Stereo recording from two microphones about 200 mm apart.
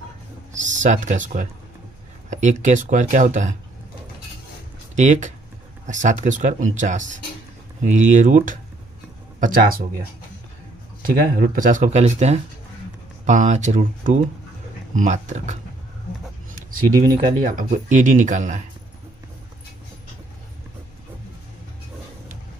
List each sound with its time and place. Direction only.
0.5 s speech: 40° right (ahead or behind)
4.9 s speech: 40° right (ahead or behind)
11.1 s speech: 45° right (ahead or behind)
17.5 s speech: 40° right (ahead or behind)